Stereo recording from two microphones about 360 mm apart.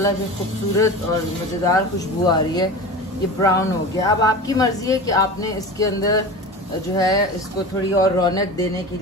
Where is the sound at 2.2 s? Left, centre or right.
Centre.